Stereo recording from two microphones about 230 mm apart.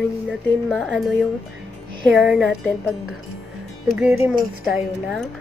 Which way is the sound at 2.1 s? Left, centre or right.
Centre.